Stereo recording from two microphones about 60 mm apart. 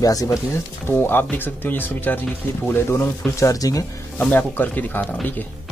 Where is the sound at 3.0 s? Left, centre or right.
Left.